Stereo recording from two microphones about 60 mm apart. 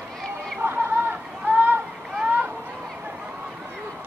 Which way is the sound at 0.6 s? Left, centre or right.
Right.